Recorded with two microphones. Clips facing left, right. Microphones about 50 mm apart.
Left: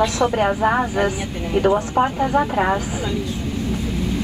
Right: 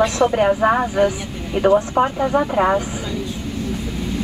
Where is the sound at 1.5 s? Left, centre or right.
Centre.